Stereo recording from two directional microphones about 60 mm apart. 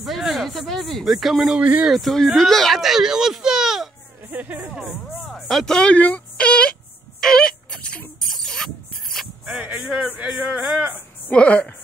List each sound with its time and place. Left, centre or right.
0.0 s speech: centre
1.6 s speech: right
1.9 s speech: centre
4.3 s speech: right
5.2 s speech: centre
5.9 s a woman's voice: left
7.2 s a sound: centre
9.5 s a sound: right
10.2 s speech: centre
11.3 s a woman's voice: centre